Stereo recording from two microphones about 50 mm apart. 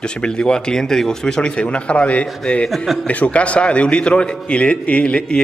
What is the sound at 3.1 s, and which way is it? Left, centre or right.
A man's voice, left.